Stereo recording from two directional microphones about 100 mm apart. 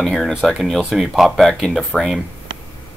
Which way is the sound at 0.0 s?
Centre (ahead or behind).